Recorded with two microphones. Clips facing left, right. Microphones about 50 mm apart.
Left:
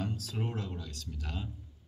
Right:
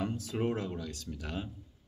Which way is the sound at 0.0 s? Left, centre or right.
Right.